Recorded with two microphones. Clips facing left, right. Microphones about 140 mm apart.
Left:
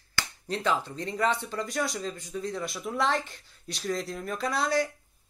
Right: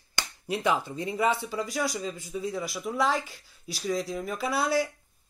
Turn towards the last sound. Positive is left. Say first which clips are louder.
# right 1 dB
turn(degrees=-10)  # may be behind; listen again after turning